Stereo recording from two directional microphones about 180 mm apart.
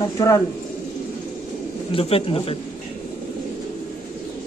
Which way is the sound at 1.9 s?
30° left (ahead or behind).